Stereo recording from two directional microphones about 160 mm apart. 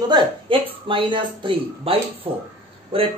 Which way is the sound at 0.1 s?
30° right (ahead or behind).